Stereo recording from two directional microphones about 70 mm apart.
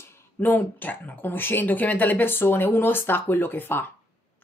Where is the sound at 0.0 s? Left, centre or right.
Left.